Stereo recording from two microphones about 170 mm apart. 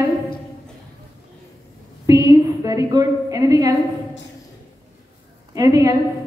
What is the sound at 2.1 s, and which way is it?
A woman's voice, 20° right (ahead or behind).